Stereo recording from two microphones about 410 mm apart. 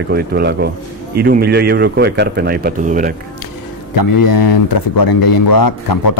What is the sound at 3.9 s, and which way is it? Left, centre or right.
Speech, left.